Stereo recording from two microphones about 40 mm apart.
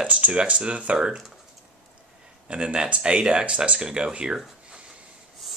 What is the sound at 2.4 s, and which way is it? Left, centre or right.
Speech, right.